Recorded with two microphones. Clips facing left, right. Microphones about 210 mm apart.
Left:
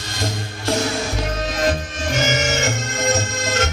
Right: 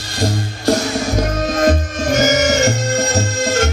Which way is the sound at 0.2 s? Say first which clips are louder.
Right 7 dB; 40° right (ahead or behind).